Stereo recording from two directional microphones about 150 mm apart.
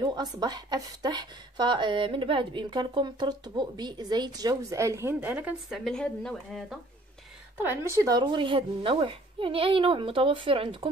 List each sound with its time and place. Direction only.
0.0 s speech: 30° right (ahead or behind); by 5.8 s 10° right (ahead or behind)
5.9 s speech: 5° left (ahead or behind)
7.5 s a woman's voice: 15° right (ahead or behind); by 10.9 s 35° right (ahead or behind)